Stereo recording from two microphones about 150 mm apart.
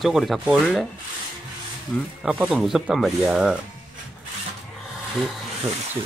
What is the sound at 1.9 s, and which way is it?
Speech, 5° left (ahead or behind).